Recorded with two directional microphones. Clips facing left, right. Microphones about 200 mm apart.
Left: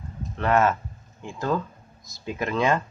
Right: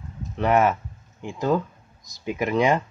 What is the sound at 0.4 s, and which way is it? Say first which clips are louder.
Speech: right 2 dB; 15° right (ahead or behind).